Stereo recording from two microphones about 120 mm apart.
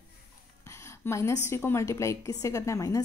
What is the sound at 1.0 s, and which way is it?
Speech, 25° left (ahead or behind).